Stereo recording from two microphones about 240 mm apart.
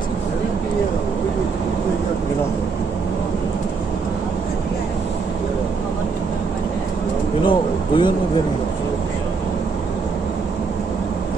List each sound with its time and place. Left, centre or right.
7.4 s speech: centre